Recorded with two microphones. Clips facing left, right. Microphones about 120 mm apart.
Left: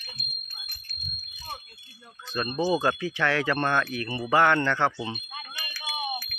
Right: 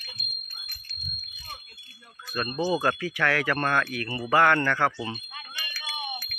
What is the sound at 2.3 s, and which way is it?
Speech, 20° left (ahead or behind).